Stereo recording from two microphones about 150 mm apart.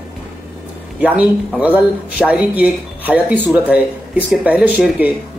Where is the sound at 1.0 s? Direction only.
10° right (ahead or behind).